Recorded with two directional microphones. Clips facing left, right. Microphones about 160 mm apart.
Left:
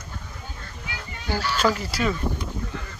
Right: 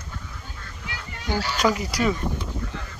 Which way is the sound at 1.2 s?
15° right (ahead or behind).